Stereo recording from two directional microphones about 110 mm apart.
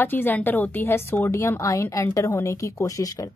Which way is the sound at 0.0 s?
20° left (ahead or behind).